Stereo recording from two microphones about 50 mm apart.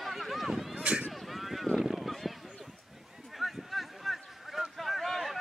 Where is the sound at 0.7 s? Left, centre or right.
Right.